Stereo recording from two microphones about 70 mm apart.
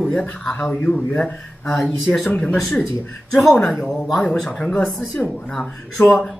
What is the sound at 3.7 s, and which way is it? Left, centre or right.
Speech, centre.